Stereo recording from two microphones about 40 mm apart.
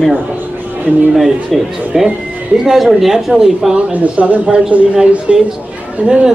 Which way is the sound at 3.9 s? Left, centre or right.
Right.